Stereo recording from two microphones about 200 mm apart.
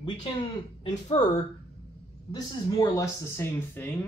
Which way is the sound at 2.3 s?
20° left (ahead or behind).